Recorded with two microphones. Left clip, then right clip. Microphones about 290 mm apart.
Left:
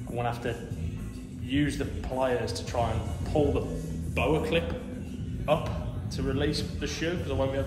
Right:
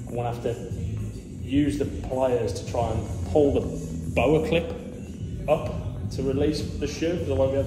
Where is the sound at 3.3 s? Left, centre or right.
Left.